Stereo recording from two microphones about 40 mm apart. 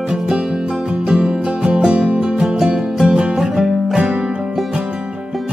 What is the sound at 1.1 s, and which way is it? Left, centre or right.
Music, centre.